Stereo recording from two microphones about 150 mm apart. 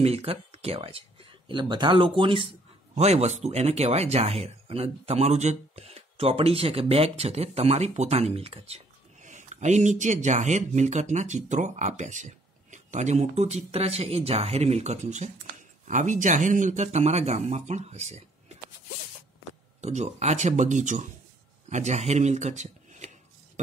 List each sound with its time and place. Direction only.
0.0 s speech: 40° right (ahead or behind)
19.8 s speech: 50° right (ahead or behind)
21.6 s shuffling cards: 50° right (ahead or behind)